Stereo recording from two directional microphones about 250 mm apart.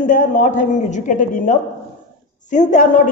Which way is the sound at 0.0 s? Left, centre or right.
Left.